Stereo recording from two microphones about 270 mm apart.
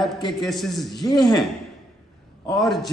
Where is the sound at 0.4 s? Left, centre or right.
Centre.